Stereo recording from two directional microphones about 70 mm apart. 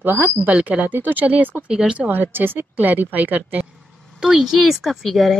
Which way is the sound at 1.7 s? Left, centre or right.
Centre.